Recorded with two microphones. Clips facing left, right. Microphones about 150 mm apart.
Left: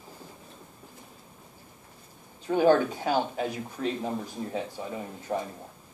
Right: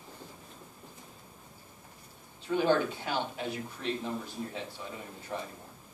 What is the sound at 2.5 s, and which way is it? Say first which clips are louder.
Speech: left 6 dB; 45° left (ahead or behind).